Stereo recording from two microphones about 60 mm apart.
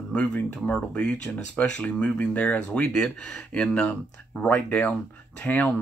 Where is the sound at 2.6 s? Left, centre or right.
Centre.